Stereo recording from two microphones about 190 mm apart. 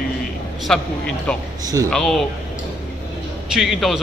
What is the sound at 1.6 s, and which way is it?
Speech, 20° right (ahead or behind).